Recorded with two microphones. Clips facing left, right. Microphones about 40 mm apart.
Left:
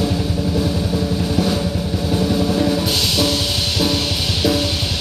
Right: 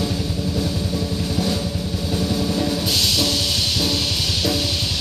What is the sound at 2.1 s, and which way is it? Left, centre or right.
Music, centre.